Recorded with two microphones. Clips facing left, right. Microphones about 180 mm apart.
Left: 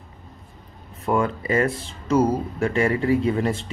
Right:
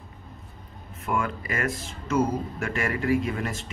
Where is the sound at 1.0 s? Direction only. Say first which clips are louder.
Left 6 dB; 35° left (ahead or behind).